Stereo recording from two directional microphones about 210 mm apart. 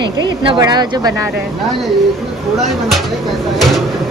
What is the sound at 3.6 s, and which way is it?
Speech, centre (ahead or behind).